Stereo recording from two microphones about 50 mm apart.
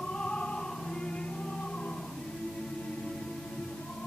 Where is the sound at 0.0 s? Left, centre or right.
Centre.